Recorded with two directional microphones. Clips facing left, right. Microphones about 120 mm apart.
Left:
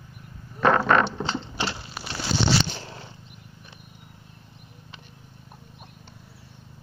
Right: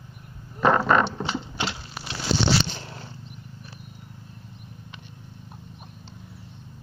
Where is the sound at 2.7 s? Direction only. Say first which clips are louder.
Even; 25° left (ahead or behind).